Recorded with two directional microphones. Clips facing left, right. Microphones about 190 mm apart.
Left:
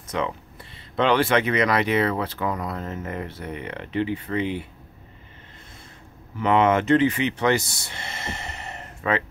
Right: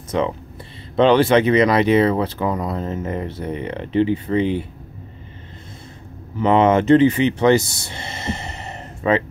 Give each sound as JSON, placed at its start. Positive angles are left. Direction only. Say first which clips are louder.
{"t": 0.1, "sound": "speech", "louder": "right 6 dB", "side_deg": -30}
{"t": 6.4, "sound": "speech", "louder": "right 4 dB", "side_deg": -30}